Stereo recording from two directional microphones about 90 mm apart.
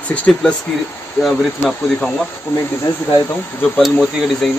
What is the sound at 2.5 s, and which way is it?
Speech, 25° left (ahead or behind).